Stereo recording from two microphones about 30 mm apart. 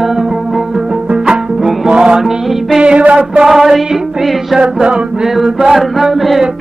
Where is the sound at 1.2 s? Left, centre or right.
Right.